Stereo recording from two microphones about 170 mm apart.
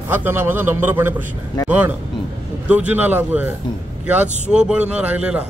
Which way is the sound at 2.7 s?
10° right (ahead or behind).